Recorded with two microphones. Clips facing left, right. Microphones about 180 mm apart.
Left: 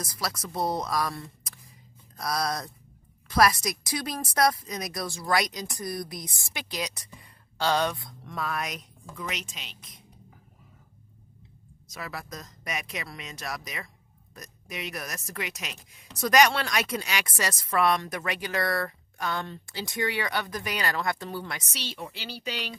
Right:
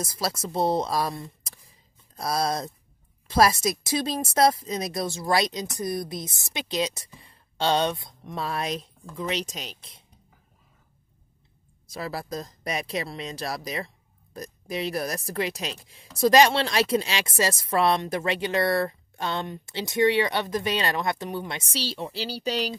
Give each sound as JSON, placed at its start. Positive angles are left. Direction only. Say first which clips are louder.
{"t": 0.0, "sound": "speech", "louder": "right 5 dB", "side_deg": -25}
{"t": 11.9, "sound": "speech", "louder": "right 6 dB", "side_deg": -35}